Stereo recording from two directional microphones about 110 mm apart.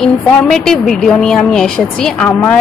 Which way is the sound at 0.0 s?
5° left (ahead or behind).